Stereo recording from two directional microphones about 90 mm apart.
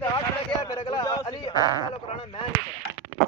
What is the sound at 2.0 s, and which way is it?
Speech, 90° left.